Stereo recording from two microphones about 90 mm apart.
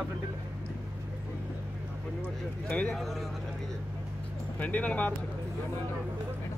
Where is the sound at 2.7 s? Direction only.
15° left (ahead or behind).